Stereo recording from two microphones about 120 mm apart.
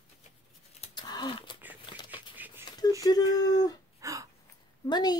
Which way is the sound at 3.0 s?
35° left (ahead or behind).